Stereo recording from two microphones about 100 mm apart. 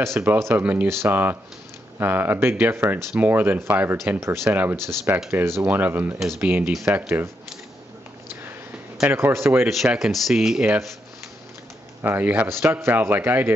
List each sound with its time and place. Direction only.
0.0 s a man's voice: 25° right (ahead or behind)
9.1 s a man's voice: 25° right (ahead or behind)
9.7 s speech: centre (ahead or behind)
12.0 s a man's voice: 20° right (ahead or behind)